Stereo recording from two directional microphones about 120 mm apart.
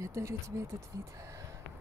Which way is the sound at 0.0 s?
25° right (ahead or behind).